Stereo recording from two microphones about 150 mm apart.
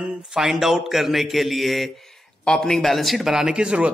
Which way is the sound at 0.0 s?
5° right (ahead or behind).